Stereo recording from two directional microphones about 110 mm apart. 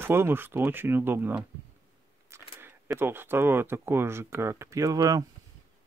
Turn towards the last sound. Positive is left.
turn(degrees=-35)  # may be behind; listen again after turning